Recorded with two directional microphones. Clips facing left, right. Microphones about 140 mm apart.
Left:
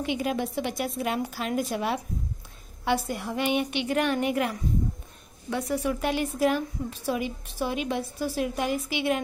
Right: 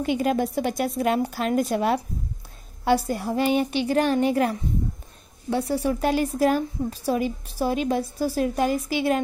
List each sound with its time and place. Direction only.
0.0 s a woman's voice: 45° right (ahead or behind)